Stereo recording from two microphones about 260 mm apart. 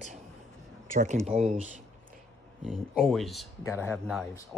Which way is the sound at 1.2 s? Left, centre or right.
Right.